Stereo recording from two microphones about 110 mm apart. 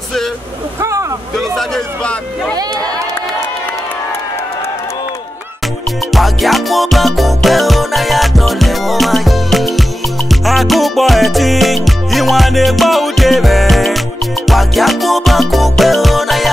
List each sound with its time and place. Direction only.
0.7 s vehicle: 25° right (ahead or behind)
1.3 s a sound: centre (ahead or behind)
6.1 s music: centre (ahead or behind)